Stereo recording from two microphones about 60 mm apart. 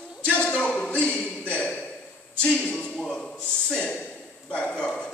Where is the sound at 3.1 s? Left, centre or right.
Centre.